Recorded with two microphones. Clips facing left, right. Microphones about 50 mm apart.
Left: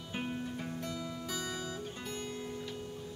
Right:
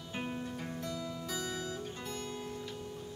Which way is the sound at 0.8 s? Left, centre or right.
Left.